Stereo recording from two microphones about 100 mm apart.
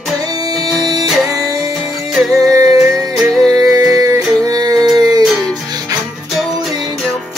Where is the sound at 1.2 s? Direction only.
35° right (ahead or behind).